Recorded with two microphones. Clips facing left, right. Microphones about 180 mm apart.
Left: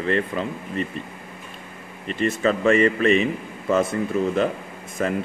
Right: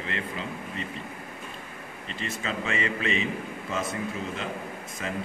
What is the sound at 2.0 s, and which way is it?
A man's voice, 60° left (ahead or behind).